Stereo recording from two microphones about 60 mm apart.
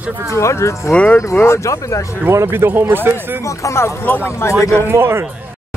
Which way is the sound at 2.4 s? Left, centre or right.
Right.